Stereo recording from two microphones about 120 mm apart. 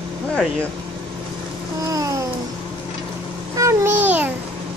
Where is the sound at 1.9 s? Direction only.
30° right (ahead or behind).